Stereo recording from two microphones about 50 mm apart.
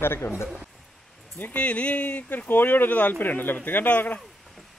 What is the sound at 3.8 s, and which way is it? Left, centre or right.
Speech, left.